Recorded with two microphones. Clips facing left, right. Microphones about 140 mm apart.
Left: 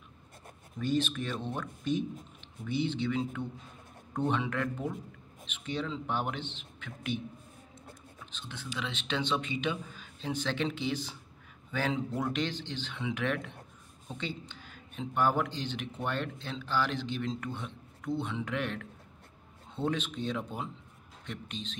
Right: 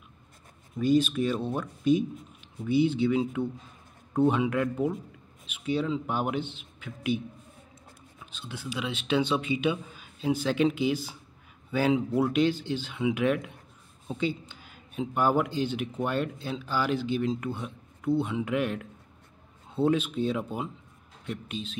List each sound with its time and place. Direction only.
0.7 s speech: 10° right (ahead or behind)
8.3 s speech: 10° right (ahead or behind)